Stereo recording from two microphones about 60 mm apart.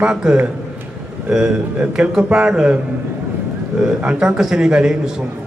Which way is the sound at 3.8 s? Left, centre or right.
Centre.